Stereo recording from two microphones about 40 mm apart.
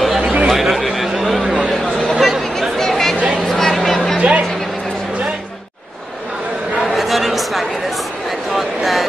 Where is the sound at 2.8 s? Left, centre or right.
Centre.